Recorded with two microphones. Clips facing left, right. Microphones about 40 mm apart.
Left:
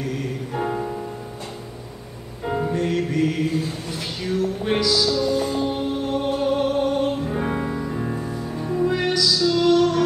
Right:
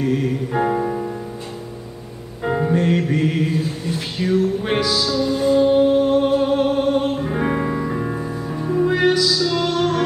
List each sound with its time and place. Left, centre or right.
0.0 s music: right
2.4 s music: centre